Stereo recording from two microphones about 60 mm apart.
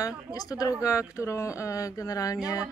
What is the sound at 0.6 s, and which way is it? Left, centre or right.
Speech, left.